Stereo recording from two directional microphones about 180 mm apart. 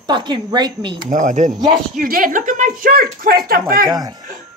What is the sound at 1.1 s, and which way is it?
Speech, 45° right (ahead or behind).